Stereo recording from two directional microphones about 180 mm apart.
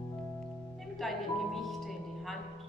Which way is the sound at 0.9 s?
Centre (ahead or behind).